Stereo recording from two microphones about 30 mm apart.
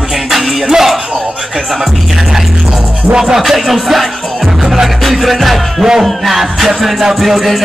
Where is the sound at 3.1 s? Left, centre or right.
Centre.